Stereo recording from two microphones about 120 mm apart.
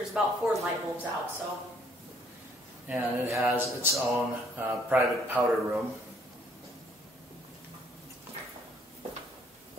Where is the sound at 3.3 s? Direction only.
25° right (ahead or behind).